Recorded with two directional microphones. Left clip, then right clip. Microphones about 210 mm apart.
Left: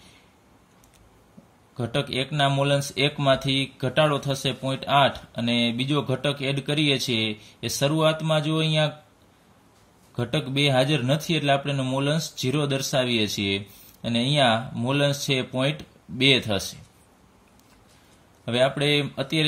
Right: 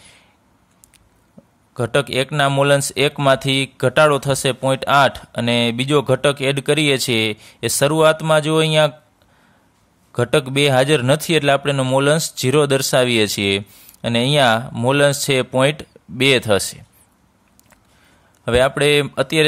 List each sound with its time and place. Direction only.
1.8 s speech: 45° right (ahead or behind)
10.1 s speech: 45° right (ahead or behind)
18.4 s speech: 45° right (ahead or behind)